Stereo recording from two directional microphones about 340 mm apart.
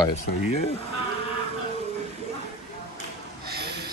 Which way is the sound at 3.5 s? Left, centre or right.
Right.